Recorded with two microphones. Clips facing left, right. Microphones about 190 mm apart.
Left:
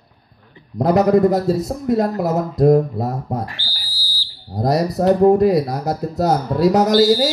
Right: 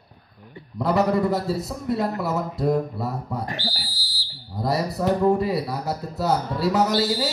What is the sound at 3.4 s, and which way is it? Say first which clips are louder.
Speech: right 5 dB; 35° right (ahead or behind).